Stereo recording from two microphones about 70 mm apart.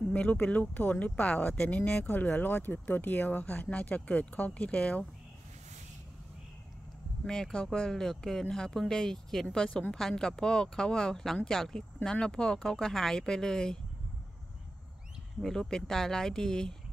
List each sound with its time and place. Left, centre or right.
0.1 s speech: centre
7.2 s speech: centre
15.4 s speech: centre